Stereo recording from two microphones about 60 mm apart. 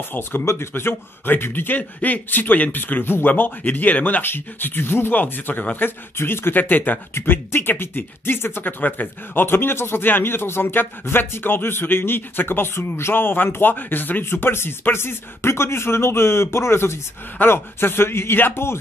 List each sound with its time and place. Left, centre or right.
0.5 s speech: left